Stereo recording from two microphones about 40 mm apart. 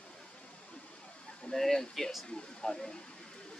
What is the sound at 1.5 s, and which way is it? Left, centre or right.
Speech, centre.